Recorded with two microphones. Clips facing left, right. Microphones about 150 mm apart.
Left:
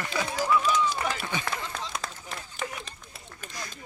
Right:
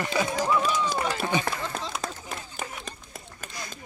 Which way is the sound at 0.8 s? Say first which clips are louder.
Right 2 dB; 45° right (ahead or behind).